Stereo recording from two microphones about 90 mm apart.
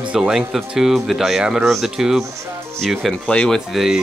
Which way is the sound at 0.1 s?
10° right (ahead or behind).